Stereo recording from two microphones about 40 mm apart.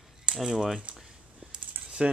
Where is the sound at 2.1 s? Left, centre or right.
Right.